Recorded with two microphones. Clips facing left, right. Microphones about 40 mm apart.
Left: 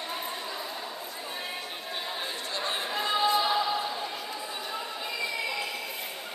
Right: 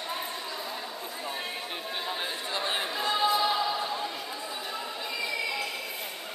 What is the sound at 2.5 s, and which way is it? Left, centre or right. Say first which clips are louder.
Chatter: right 2 dB; centre.